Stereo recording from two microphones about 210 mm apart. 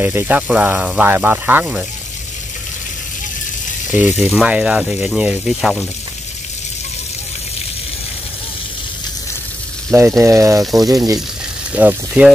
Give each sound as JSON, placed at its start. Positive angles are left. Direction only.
{"t": 0.0, "sound": "speech", "side_deg": -10}
{"t": 3.9, "sound": "speech", "side_deg": -5}
{"t": 9.8, "sound": "speech", "side_deg": -10}